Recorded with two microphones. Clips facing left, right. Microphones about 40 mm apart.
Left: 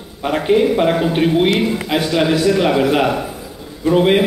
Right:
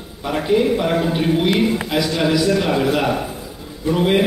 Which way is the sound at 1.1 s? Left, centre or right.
Left.